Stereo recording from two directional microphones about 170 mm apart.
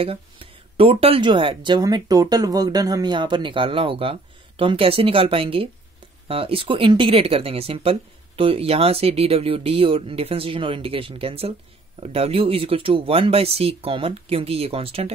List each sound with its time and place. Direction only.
0.0 s speech: 35° right (ahead or behind)